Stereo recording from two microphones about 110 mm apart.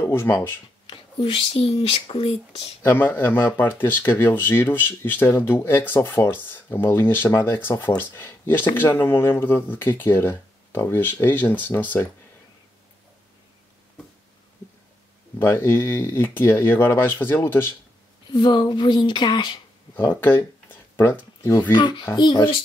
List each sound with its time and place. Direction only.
0.0 s speech: 25° left (ahead or behind)
0.8 s speech: 55° left (ahead or behind)
2.8 s speech: 20° left (ahead or behind)
15.3 s speech: 20° left (ahead or behind)
18.3 s speech: 45° left (ahead or behind)
20.0 s speech: 20° left (ahead or behind)
21.7 s speech: 45° left (ahead or behind)